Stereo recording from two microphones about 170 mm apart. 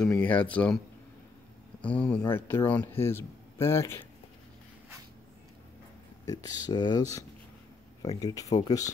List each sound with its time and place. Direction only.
0.1 s speech: 10° left (ahead or behind)
1.8 s speech: 5° left (ahead or behind)
6.2 s speech: 25° left (ahead or behind)